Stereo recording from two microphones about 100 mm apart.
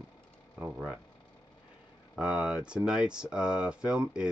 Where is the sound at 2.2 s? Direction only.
10° right (ahead or behind).